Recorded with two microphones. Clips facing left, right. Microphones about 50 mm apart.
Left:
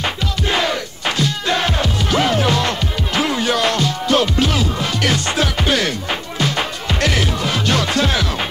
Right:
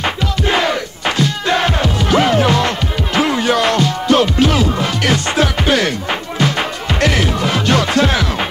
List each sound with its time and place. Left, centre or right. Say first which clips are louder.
0.0 s music: right 4 dB; right